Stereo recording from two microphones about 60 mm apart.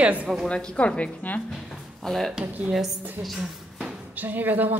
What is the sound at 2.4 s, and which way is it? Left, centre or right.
Speech, right.